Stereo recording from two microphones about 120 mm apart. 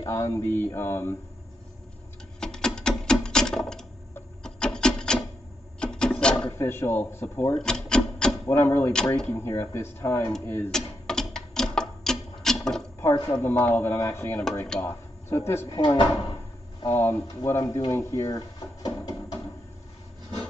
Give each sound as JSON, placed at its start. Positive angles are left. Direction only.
{"t": 0.0, "sound": "speech", "side_deg": 25}
{"t": 2.4, "sound": "a sound", "side_deg": 5}
{"t": 4.4, "sound": "rub", "side_deg": 5}
{"t": 5.8, "sound": "filing", "side_deg": 5}
{"t": 6.4, "sound": "speech", "side_deg": 20}
{"t": 7.5, "sound": "rub", "side_deg": 5}
{"t": 8.5, "sound": "speech", "side_deg": 20}
{"t": 8.9, "sound": "speech", "side_deg": 5}
{"t": 9.3, "sound": "speech", "side_deg": 20}
{"t": 10.7, "sound": "a sound", "side_deg": 5}
{"t": 13.0, "sound": "speech", "side_deg": 20}
{"t": 16.9, "sound": "speech", "side_deg": 20}
{"t": 17.9, "sound": "drawer open or close", "side_deg": 25}